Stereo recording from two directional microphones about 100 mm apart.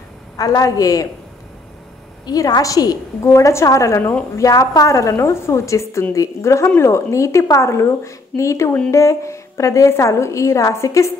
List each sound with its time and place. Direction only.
0.4 s a woman's voice: 35° left (ahead or behind)
2.2 s a woman's voice: 40° left (ahead or behind)